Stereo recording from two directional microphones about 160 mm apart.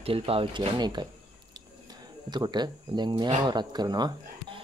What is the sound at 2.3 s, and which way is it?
Speech, 25° right (ahead or behind).